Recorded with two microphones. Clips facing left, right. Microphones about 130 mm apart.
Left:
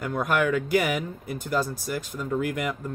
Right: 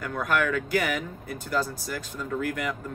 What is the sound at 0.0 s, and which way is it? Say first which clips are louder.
Speech: left 2 dB; 20° left (ahead or behind).